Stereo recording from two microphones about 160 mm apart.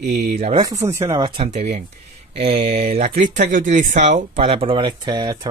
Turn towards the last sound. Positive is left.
turn(degrees=-25)  # may be behind; listen again after turning